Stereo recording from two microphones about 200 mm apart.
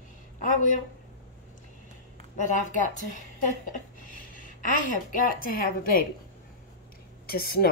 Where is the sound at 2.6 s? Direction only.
40° left (ahead or behind).